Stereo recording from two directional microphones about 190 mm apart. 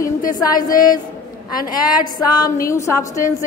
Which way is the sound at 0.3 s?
20° left (ahead or behind).